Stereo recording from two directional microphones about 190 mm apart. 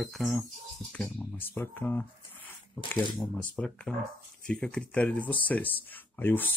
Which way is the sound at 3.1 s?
5° left (ahead or behind).